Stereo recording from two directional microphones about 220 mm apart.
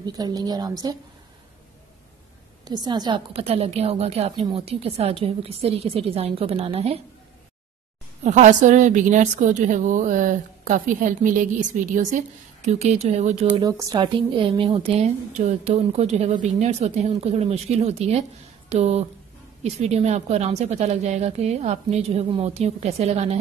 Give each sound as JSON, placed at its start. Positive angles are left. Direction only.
{"t": 0.0, "sound": "a woman's voice", "side_deg": -15}
{"t": 2.6, "sound": "a woman's voice", "side_deg": -20}
{"t": 8.2, "sound": "a woman's voice", "side_deg": -35}
{"t": 13.6, "sound": "a woman's voice", "side_deg": -15}